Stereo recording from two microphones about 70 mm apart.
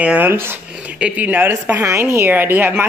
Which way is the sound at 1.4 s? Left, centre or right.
Right.